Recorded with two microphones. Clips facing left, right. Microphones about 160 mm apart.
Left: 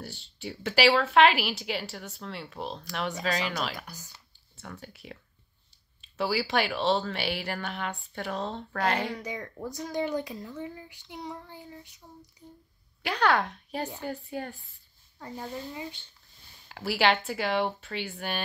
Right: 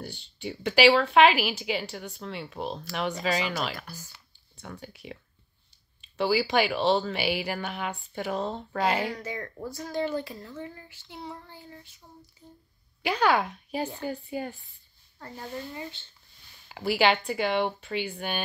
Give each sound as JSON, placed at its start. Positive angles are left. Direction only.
{"t": 0.0, "sound": "speech", "side_deg": 0}
{"t": 3.8, "sound": "speech", "side_deg": 20}
{"t": 4.6, "sound": "speech", "side_deg": 0}
{"t": 9.1, "sound": "child singing", "side_deg": 10}
{"t": 12.0, "sound": "speech", "side_deg": 5}
{"t": 12.4, "sound": "child singing", "side_deg": 15}
{"t": 13.0, "sound": "speech", "side_deg": 0}
{"t": 16.6, "sound": "speech", "side_deg": 0}